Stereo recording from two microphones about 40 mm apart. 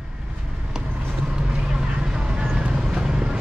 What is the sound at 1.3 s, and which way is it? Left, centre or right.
Vehicle, centre.